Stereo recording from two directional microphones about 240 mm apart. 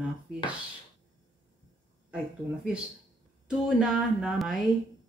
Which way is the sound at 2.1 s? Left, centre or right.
Centre.